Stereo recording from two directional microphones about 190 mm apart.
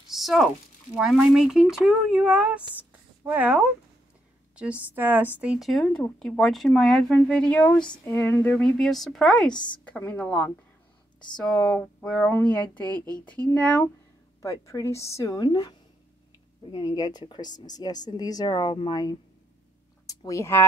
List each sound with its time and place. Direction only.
0.1 s a sound: centre (ahead or behind)
0.9 s speech: 5° right (ahead or behind)
7.8 s speech: 25° left (ahead or behind)
8.1 s speech: 10° left (ahead or behind)
9.5 s speech: 25° left (ahead or behind)
9.8 s speech: 10° left (ahead or behind)
16.7 s speech: 20° left (ahead or behind)